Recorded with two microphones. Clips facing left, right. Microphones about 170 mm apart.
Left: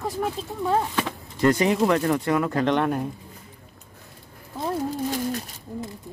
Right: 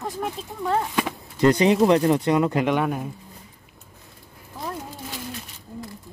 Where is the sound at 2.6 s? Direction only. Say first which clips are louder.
Left 1 dB; 5° right (ahead or behind).